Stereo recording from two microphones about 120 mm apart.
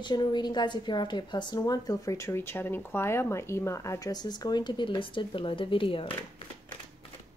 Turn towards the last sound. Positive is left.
turn(degrees=45)  # may be behind; listen again after turning